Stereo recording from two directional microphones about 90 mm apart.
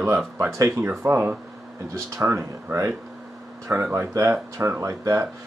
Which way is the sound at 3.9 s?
35° right (ahead or behind).